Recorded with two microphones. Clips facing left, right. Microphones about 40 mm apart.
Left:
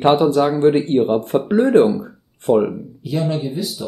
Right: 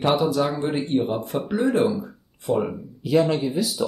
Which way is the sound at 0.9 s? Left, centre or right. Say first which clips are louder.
Left 7 dB; left.